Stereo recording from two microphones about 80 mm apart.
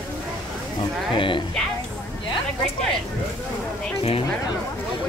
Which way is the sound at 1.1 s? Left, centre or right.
Left.